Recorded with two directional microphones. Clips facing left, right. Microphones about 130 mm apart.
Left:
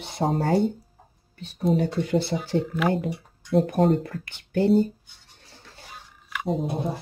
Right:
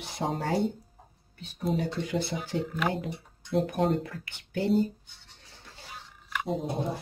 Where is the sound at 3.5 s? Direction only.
40° left (ahead or behind).